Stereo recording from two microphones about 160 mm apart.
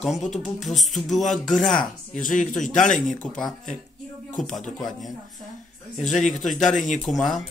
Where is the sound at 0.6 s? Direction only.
Centre (ahead or behind).